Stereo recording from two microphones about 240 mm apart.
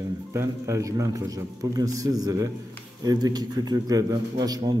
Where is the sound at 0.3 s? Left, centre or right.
Centre.